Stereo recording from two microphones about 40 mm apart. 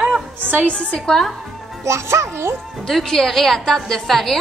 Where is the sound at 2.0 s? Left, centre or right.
Right.